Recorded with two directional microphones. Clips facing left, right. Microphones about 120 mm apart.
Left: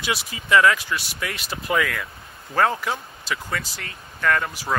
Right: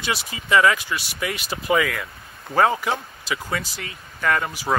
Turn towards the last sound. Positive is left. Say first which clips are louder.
# right 1 dB
turn(degrees=-5)  # may be behind; listen again after turning